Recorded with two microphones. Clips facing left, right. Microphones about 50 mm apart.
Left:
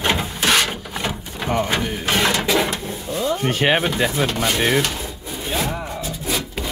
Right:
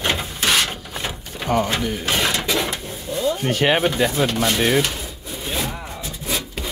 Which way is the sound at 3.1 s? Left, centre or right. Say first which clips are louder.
Even; centre.